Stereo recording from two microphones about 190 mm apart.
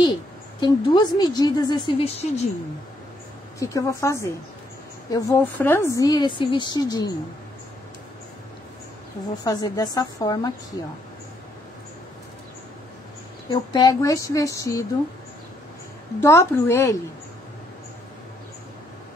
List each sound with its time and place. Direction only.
0.6 s a woman's voice: 25° left (ahead or behind)
3.5 s a woman's voice: 15° left (ahead or behind)
9.4 s a woman's voice: 20° left (ahead or behind)
13.5 s speech: 20° left (ahead or behind)
16.2 s speech: 15° left (ahead or behind)